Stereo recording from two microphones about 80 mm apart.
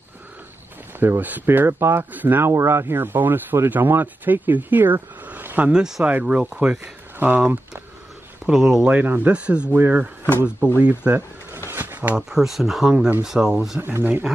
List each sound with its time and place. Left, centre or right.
0.9 s speech: right
5.2 s a sound: right
5.7 s speech: centre
8.5 s speech: centre
8.8 s speech: right
9.8 s speech: right
11.7 s a sound: right
12.2 s speech: centre
13.7 s speech: right